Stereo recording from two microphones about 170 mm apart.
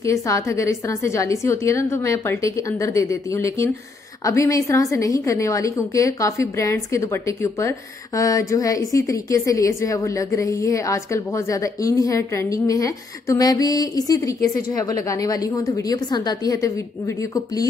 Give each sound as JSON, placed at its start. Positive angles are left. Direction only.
{"t": 0.0, "sound": "a woman's voice", "side_deg": 20}